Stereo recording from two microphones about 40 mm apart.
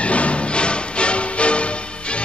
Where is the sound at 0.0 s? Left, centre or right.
Left.